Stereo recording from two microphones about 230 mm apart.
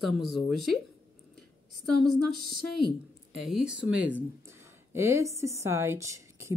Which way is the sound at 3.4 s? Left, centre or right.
Centre.